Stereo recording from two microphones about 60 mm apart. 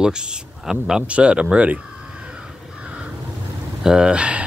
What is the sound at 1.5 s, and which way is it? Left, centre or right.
Crow, right.